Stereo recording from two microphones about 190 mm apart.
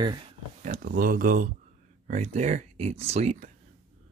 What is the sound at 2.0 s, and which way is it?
Speech, 35° right (ahead or behind).